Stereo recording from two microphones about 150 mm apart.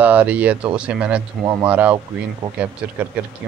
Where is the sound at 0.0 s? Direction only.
10° right (ahead or behind).